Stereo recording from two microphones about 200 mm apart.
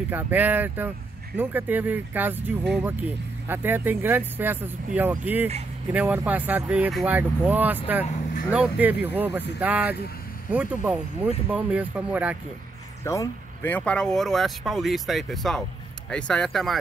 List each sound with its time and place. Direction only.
0.1 s speech: 10° right (ahead or behind)
8.1 s vehicle: 40° left (ahead or behind)
8.5 s speech: 5° right (ahead or behind)
13.0 s speech: 15° left (ahead or behind)